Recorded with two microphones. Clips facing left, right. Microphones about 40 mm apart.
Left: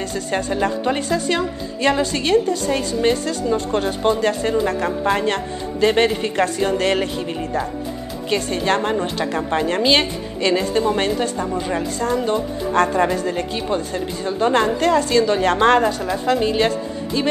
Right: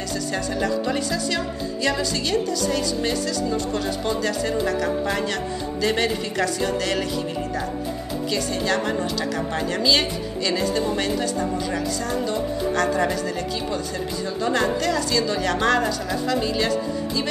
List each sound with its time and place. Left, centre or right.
0.1 s a woman's voice: left
8.3 s a woman's voice: left